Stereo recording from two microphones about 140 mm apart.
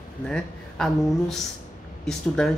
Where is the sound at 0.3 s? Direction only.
5° left (ahead or behind).